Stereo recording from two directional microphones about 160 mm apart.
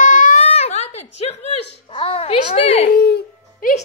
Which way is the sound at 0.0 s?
50° left (ahead or behind).